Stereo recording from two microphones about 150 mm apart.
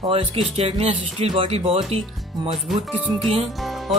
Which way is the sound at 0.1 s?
35° right (ahead or behind).